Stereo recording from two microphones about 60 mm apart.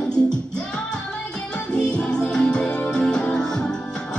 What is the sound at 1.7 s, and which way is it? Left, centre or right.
Music, centre.